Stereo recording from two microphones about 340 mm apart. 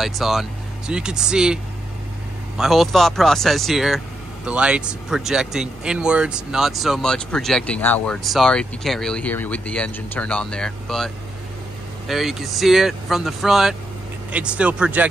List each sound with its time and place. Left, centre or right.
0.0 s speech: centre
12.1 s speech: centre